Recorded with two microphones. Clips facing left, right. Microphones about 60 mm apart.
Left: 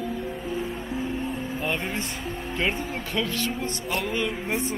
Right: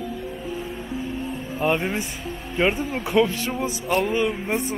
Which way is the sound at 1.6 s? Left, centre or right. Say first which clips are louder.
Right 8 dB; centre.